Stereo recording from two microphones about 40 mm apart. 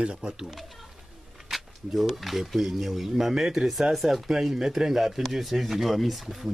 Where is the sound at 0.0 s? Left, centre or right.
Right.